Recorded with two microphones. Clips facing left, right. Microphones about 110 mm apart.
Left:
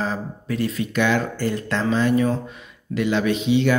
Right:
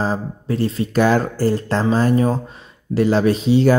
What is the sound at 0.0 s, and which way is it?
Speech, 30° right (ahead or behind).